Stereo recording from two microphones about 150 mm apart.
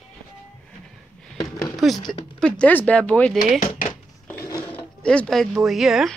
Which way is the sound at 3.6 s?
50° left (ahead or behind).